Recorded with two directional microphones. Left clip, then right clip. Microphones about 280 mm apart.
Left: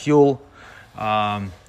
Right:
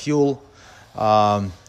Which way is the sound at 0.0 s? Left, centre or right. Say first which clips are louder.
Left 4 dB; centre.